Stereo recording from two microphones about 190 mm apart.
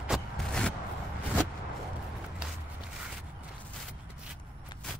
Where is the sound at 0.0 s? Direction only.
Centre (ahead or behind).